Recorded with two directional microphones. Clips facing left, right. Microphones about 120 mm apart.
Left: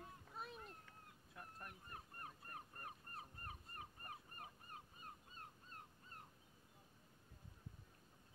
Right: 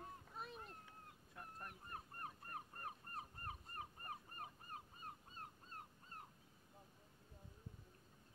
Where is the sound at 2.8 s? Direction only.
35° right (ahead or behind).